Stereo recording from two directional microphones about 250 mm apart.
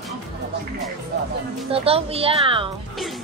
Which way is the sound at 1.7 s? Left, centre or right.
Right.